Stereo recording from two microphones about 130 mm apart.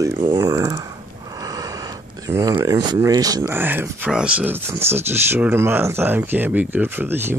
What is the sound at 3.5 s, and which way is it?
Speech, 15° right (ahead or behind).